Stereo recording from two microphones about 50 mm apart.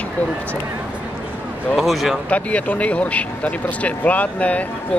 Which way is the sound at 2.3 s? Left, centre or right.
Left.